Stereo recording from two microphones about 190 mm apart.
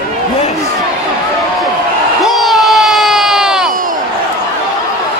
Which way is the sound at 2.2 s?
Centre (ahead or behind).